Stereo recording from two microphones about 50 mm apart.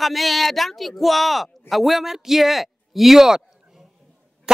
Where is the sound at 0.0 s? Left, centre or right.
Centre.